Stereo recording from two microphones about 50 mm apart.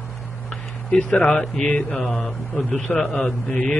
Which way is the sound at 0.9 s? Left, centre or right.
Left.